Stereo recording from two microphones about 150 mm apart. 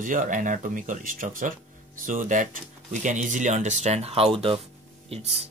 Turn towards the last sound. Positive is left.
turn(degrees=-45)  # may be behind; listen again after turning